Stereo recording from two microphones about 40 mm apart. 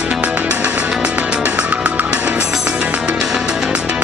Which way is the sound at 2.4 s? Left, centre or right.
Centre.